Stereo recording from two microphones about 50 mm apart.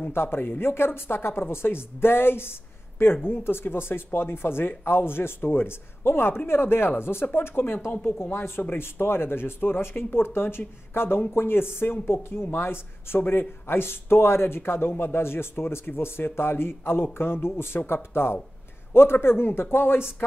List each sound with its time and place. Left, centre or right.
0.1 s speech: left